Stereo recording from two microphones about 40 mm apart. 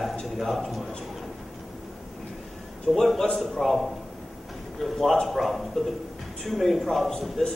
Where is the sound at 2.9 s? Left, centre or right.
Centre.